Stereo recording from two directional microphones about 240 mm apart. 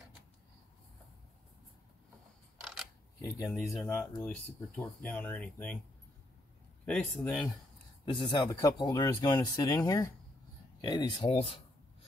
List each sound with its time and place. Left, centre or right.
2.6 s a sound: centre
3.2 s speech: centre
6.9 s speech: centre
8.0 s speech: centre